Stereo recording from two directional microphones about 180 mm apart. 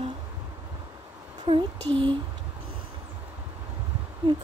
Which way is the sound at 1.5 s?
30° right (ahead or behind).